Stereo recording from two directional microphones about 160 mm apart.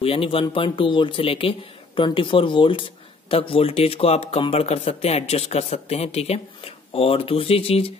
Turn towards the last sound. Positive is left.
turn(degrees=35)  # may be behind; listen again after turning